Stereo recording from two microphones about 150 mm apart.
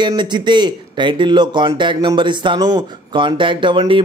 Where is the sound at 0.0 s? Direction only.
30° right (ahead or behind).